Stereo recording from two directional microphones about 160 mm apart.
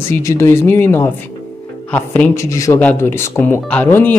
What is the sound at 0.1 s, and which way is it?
Speech, 20° left (ahead or behind).